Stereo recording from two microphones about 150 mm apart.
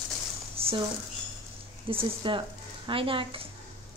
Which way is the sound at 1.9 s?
35° right (ahead or behind).